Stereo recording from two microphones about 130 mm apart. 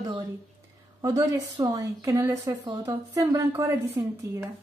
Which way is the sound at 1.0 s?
25° right (ahead or behind).